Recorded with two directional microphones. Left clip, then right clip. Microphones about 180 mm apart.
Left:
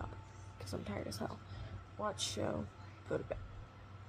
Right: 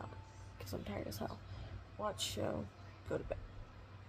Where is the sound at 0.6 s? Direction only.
5° left (ahead or behind).